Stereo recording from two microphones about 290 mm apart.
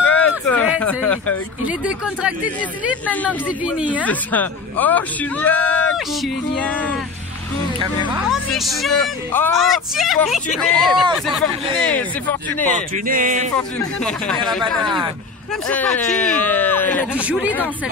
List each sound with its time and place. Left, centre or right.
0.0 s speech: centre
8.3 s speech: centre
12.7 s speech: right
13.6 s speech: centre
17.2 s speech: centre